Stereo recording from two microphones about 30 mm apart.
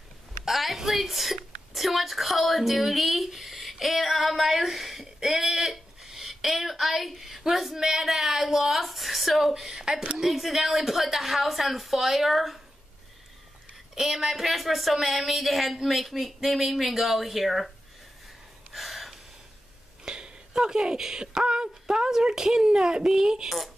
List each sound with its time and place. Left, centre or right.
0.5 s a sound: centre
0.7 s a woman's voice: centre
9.7 s speech: centre
10.1 s speech: centre
13.9 s speech: centre
18.7 s gasp: centre
20.1 s a sound: right
22.1 s speech: centre